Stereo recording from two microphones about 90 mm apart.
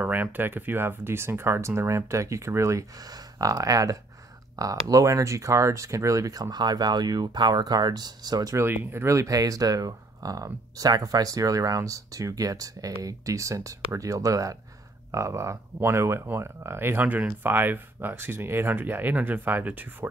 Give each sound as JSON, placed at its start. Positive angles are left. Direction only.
{"t": 0.0, "sound": "speech", "side_deg": -20}
{"t": 8.5, "sound": "speech", "side_deg": -25}